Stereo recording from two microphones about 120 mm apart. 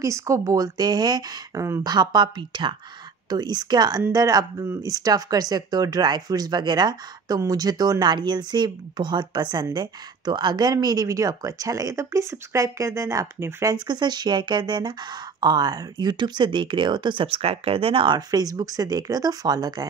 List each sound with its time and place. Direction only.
0.0 s speech: 25° right (ahead or behind)
13.8 s speech: 35° right (ahead or behind)